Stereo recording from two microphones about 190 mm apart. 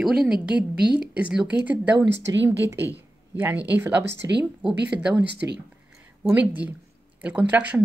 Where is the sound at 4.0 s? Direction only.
65° right (ahead or behind).